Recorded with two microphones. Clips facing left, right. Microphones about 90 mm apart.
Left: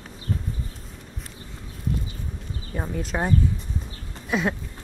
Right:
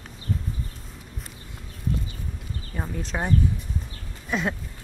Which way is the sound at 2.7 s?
5° left (ahead or behind).